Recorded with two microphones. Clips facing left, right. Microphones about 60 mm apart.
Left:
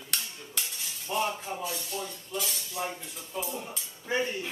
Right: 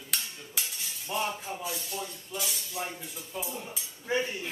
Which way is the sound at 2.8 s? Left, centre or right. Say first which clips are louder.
Left 2 dB; right.